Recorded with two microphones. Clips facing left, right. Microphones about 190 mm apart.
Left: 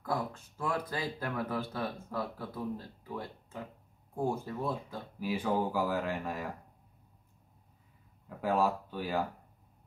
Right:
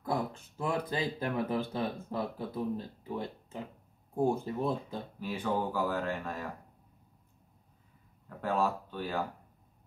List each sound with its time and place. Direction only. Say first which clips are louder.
0.0 s speech: right 2 dB; 20° right (ahead or behind)
5.2 s speech: left 2 dB; 10° left (ahead or behind)
8.4 s speech: left 1 dB; 10° left (ahead or behind)